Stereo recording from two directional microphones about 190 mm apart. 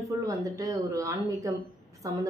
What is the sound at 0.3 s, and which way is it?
A woman's voice, 15° right (ahead or behind).